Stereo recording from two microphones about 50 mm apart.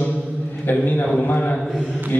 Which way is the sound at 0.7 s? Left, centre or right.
Left.